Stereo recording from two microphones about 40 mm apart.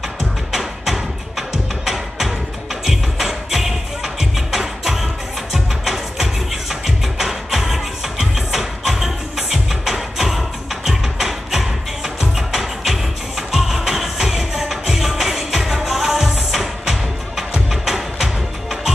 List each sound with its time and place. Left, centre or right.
0.5 s music: centre